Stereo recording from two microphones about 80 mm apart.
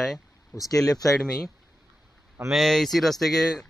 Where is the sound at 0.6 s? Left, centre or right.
Left.